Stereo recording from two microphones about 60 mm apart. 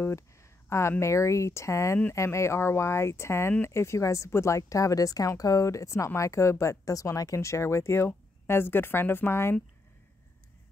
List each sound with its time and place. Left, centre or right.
0.0 s a woman's voice: left